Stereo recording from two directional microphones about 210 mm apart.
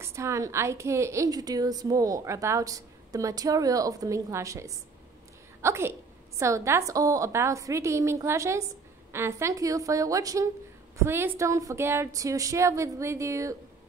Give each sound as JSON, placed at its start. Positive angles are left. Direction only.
{"t": 0.0, "sound": "a woman's voice", "side_deg": -15}